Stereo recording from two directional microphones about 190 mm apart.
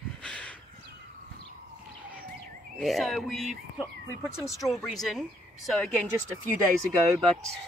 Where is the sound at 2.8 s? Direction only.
Centre (ahead or behind).